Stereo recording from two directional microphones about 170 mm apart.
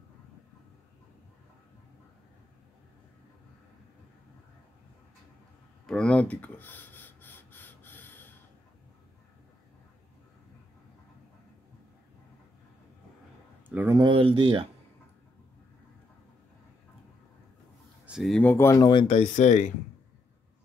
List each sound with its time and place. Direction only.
5.9 s gasp: 5° left (ahead or behind)
13.7 s a sound: 10° right (ahead or behind)
13.9 s speech: 30° right (ahead or behind)
18.0 s speech: centre (ahead or behind)
18.4 s speech: 15° left (ahead or behind)
18.9 s speech: 30° left (ahead or behind)
19.1 s speech: 45° left (ahead or behind)